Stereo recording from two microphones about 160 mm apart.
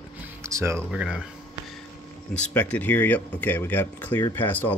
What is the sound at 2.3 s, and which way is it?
Speech, 10° left (ahead or behind).